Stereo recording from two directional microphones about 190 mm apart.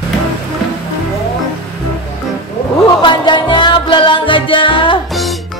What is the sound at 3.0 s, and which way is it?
Music, 25° left (ahead or behind).